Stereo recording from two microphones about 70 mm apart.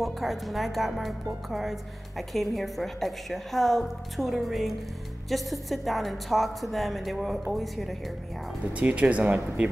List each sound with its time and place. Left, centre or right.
0.0 s speech: centre
8.7 s speech: centre